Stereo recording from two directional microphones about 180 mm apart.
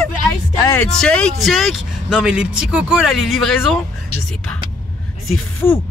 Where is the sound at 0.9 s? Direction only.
5° left (ahead or behind).